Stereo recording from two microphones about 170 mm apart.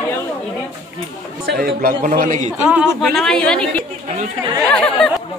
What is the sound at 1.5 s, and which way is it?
A man's voice, 65° right (ahead or behind).